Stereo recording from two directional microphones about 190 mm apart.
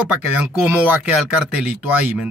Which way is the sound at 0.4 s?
10° right (ahead or behind).